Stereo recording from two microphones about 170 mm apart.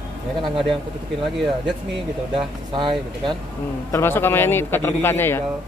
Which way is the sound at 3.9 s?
15° left (ahead or behind).